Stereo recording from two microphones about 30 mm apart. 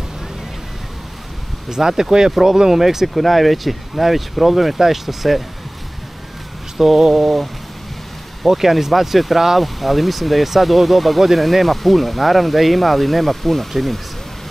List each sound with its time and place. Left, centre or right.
1.7 s speech: centre
3.2 s speech: centre
6.8 s speech: centre
8.5 s speech: centre